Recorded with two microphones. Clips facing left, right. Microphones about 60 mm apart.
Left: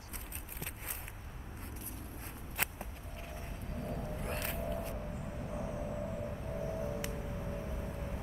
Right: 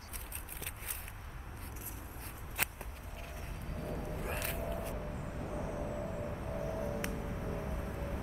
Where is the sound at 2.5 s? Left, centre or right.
Centre.